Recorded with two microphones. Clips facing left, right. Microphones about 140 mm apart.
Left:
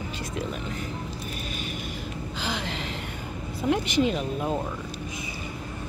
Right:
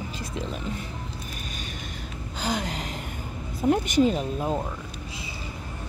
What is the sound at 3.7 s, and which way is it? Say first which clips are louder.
Speech: right 3 dB; 40° right (ahead or behind).